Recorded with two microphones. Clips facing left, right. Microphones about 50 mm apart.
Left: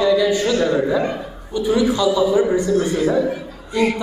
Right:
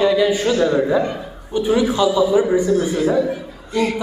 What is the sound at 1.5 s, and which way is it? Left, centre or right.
A man's voice, right.